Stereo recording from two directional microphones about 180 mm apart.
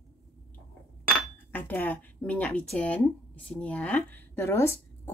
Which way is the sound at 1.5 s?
10° left (ahead or behind).